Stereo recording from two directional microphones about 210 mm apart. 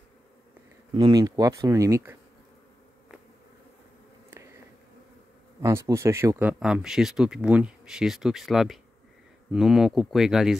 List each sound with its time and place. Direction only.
0.9 s speech: 20° right (ahead or behind)
5.6 s speech: 15° right (ahead or behind)